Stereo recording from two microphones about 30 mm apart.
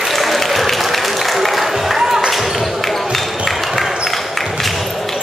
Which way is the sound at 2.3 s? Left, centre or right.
Centre.